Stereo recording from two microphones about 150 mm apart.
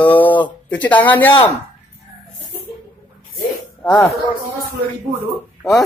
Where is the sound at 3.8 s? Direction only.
25° left (ahead or behind).